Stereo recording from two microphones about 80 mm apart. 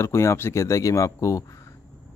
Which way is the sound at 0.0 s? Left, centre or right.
Left.